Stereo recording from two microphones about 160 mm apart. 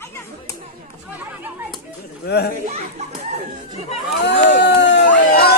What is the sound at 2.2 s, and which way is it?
Speech, 90° left.